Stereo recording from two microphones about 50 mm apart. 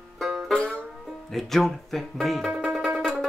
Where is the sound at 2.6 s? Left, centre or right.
Centre.